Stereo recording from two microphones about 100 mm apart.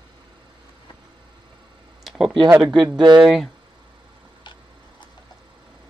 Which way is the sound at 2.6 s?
Centre (ahead or behind).